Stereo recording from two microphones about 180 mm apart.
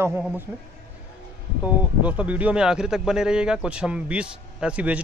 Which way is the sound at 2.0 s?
10° right (ahead or behind).